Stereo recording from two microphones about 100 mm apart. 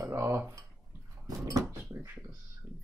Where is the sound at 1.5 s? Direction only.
35° right (ahead or behind).